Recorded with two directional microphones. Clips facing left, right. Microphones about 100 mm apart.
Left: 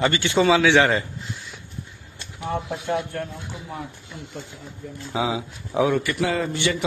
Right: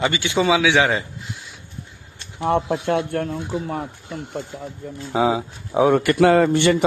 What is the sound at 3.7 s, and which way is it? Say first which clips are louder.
Speech: right 7 dB; 60° right (ahead or behind).